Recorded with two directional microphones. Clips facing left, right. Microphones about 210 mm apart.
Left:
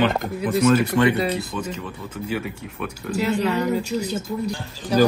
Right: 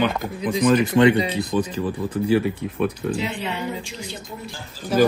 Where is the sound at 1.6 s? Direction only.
35° right (ahead or behind).